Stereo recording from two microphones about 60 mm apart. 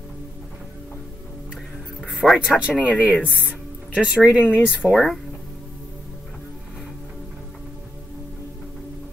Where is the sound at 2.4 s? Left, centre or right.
Centre.